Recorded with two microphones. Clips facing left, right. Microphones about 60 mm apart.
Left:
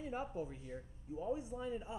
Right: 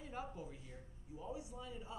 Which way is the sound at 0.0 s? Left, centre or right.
Left.